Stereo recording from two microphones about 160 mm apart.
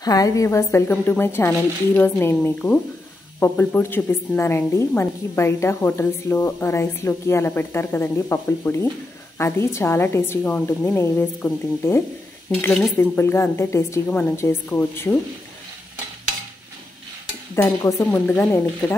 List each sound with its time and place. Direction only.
0.0 s a woman's voice: 20° left (ahead or behind)
17.6 s a woman's voice: 20° left (ahead or behind)